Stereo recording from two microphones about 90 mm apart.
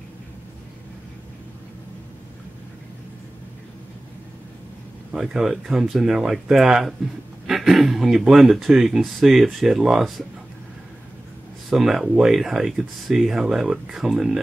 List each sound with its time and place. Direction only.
5.1 s speech: 5° right (ahead or behind)
11.7 s speech: 5° right (ahead or behind)